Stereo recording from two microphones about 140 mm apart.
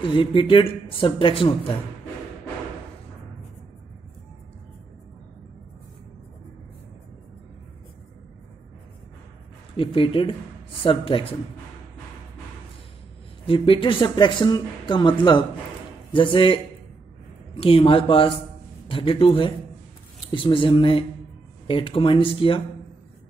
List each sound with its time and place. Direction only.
0.1 s speech: 35° left (ahead or behind)
9.8 s speech: 40° left (ahead or behind)
13.5 s speech: 40° left (ahead or behind)
17.6 s speech: 40° left (ahead or behind)